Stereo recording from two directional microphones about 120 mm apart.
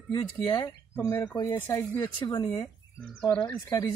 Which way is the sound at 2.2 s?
35° left (ahead or behind).